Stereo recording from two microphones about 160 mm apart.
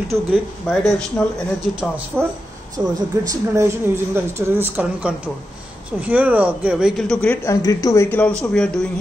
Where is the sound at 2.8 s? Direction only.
20° right (ahead or behind); by 7.3 s 5° left (ahead or behind).